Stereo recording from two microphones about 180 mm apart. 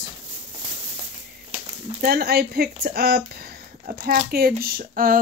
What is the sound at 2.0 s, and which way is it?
Speech, 60° right (ahead or behind).